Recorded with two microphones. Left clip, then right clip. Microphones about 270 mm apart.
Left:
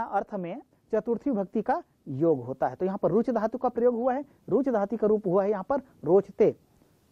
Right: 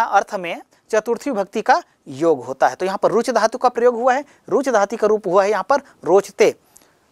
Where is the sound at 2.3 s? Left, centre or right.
Centre.